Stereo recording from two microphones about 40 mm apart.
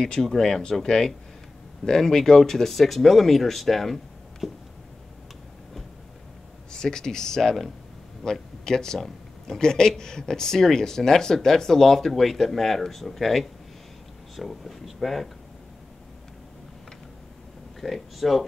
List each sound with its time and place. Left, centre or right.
0.0 s speech: centre
6.7 s speech: centre
17.7 s speech: centre